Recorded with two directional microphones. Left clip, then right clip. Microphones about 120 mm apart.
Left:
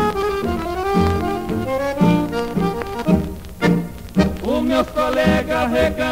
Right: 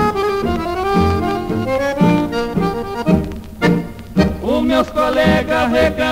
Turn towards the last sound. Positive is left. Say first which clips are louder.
# right 3 dB
turn(degrees=35)  # may be behind; listen again after turning